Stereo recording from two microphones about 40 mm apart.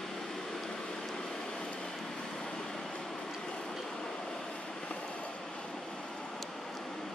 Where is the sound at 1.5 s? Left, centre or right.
Left.